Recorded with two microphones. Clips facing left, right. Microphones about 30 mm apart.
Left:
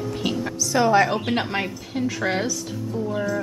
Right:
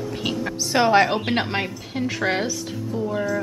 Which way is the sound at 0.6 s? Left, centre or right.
Right.